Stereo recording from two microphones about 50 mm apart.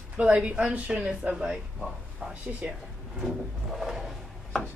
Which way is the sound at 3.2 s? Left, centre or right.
Centre.